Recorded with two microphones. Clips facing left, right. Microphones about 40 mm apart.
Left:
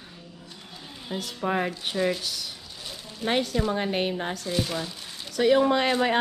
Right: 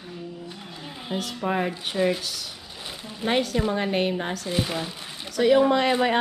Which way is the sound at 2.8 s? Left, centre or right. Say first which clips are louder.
Right 3 dB; right.